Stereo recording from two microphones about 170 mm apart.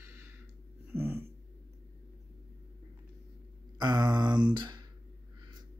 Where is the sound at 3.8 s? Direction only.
25° right (ahead or behind).